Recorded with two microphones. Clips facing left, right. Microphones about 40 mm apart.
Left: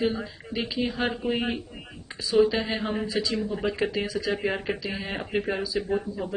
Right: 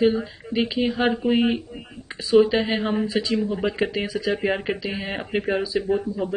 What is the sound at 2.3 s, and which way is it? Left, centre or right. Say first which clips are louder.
Speech: right 5 dB; right.